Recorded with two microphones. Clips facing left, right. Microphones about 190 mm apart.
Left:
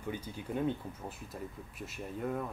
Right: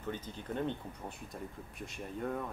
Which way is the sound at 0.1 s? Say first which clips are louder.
Left 2 dB; 10° left (ahead or behind).